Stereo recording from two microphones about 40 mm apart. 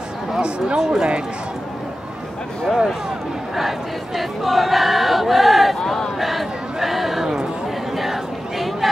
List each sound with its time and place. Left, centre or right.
0.4 s speech: right
0.8 s speech: centre
2.7 s speech: centre
6.1 s crowd: centre
7.9 s a sound: centre